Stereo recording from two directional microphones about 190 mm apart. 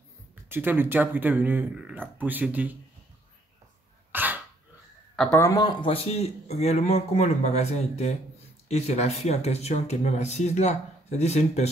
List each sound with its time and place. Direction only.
0.5 s speech: 10° right (ahead or behind)
4.1 s dog: 10° right (ahead or behind)
5.1 s a man's voice: centre (ahead or behind)
5.4 s speech: 20° left (ahead or behind); by 11.7 s 35° left (ahead or behind)